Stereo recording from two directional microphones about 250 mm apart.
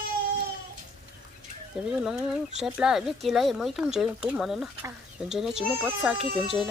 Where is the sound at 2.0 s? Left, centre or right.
Centre.